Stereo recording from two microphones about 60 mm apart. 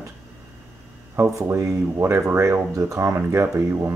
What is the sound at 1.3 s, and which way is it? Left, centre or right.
Speech, right.